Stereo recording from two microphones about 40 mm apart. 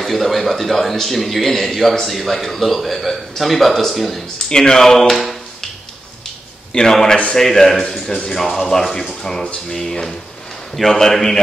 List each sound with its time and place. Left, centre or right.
0.0 s a man's voice: centre
4.5 s speech: centre
5.1 s tap: centre
6.7 s speech: centre